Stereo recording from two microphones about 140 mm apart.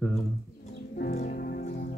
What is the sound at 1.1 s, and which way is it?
Music, 75° left (ahead or behind).